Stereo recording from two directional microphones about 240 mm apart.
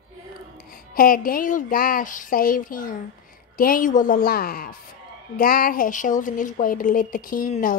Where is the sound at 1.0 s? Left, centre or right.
Left.